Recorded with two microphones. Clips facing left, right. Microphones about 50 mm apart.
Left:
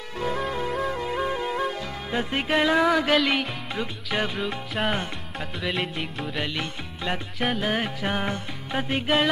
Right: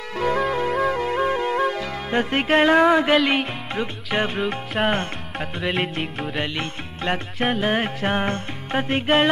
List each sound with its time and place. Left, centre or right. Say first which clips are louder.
0.3 s music: right 6 dB; centre
2.1 s music: right 5 dB; right
2.9 s music: right 4 dB; right
3.2 s music: right 3 dB; centre
3.7 s music: right 4 dB; right
4.5 s music: right 5 dB; centre
6.3 s music: right 1 dB; centre